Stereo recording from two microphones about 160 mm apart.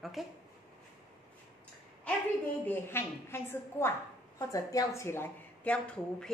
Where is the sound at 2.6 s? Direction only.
15° left (ahead or behind).